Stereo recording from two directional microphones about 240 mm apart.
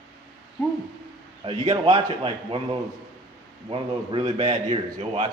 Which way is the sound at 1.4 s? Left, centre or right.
Right.